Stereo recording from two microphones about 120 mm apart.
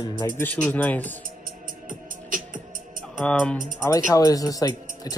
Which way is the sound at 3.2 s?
10° left (ahead or behind).